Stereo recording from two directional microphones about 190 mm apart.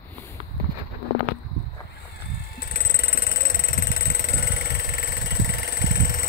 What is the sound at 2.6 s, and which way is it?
Vehicle, 55° left (ahead or behind).